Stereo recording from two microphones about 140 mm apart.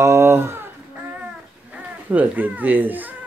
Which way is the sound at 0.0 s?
20° right (ahead or behind).